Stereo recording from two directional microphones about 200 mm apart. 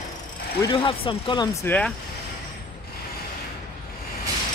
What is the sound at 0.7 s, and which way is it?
Speech, 25° left (ahead or behind).